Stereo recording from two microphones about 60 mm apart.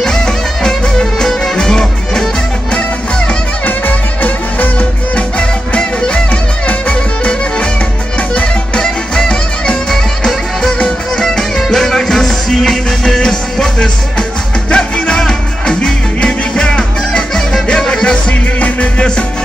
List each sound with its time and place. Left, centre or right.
0.0 s music: centre
3.6 s music: left
5.8 s music: centre